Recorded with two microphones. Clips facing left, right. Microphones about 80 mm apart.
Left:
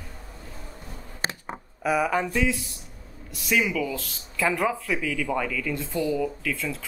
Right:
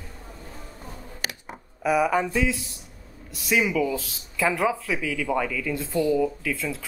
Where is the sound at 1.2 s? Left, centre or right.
Left.